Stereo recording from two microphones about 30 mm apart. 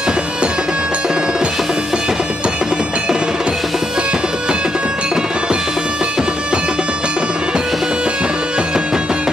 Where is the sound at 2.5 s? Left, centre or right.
Right.